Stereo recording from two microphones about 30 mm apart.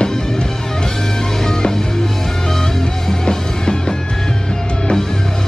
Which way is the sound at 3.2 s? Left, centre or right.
Left.